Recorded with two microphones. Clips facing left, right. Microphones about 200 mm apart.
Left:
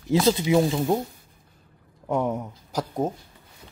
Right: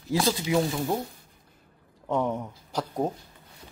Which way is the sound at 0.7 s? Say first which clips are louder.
Left 5 dB; 20° left (ahead or behind).